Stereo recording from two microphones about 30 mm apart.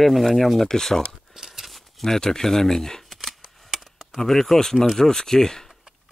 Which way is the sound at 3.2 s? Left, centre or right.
Centre.